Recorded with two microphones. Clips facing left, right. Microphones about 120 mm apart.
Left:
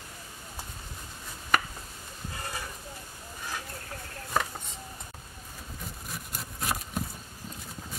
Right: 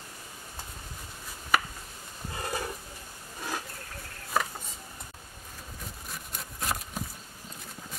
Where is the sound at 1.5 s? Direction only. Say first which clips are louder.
Even; 5° right (ahead or behind).